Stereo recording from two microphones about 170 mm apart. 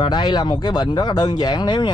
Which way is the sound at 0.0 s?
25° left (ahead or behind).